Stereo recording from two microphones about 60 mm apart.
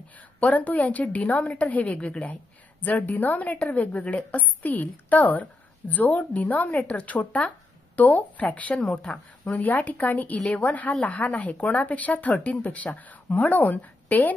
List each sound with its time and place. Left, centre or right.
0.4 s a woman's voice: left